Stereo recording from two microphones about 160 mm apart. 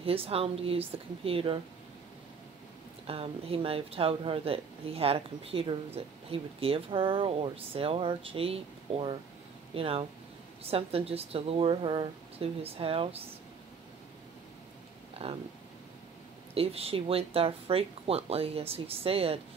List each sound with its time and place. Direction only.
0.0 s speech: 35° right (ahead or behind)
3.1 s speech: 35° right (ahead or behind)
16.5 s speech: 35° right (ahead or behind)